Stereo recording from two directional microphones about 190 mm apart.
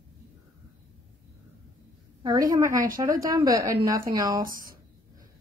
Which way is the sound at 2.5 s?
20° right (ahead or behind).